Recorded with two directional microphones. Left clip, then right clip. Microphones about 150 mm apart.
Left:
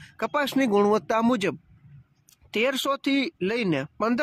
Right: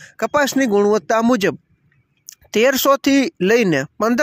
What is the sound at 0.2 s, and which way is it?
A man's voice, 40° right (ahead or behind).